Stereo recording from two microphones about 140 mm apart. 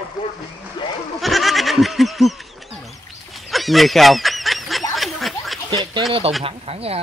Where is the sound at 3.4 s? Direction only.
Centre (ahead or behind).